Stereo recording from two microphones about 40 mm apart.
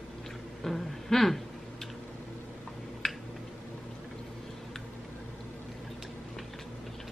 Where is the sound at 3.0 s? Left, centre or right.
Centre.